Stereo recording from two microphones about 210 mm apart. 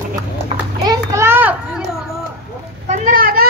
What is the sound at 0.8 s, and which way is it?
Children playing, 10° right (ahead or behind).